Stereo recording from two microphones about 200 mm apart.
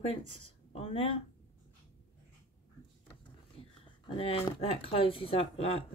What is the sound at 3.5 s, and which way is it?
Speech, 25° left (ahead or behind).